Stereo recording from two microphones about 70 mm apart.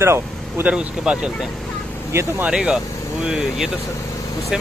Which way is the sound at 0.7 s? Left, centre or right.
Centre.